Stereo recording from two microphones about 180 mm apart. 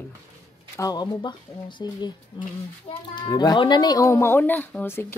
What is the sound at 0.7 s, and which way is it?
A child's voice, 20° left (ahead or behind).